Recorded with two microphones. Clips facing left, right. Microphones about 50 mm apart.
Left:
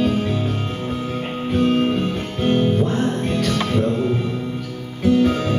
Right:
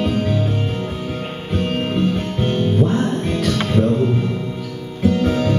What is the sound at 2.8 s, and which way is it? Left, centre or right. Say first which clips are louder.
Music: right 3 dB; centre.